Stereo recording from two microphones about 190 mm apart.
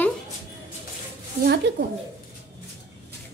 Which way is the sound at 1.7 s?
65° right (ahead or behind).